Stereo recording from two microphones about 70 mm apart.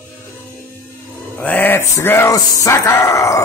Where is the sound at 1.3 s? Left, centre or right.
Left.